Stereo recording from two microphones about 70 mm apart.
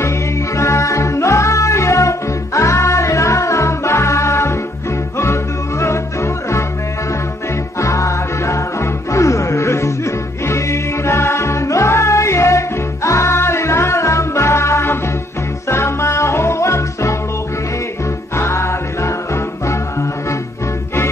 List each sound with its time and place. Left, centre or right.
0.6 s music: left
7.8 s music: left
18.3 s music: left